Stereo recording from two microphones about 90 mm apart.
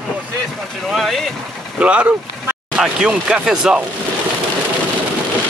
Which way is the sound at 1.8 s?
15° right (ahead or behind).